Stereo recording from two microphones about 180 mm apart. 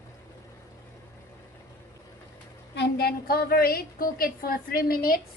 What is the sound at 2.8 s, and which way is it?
A woman's voice, 60° left (ahead or behind).